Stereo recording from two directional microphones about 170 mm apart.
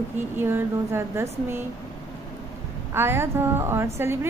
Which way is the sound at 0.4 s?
15° right (ahead or behind).